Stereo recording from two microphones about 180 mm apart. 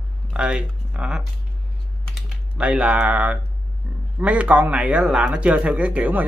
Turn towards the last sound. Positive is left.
turn(degrees=-10)  # may be behind; listen again after turning